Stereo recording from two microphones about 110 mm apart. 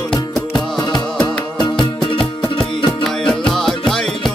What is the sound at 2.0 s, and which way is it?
Music, 50° left (ahead or behind).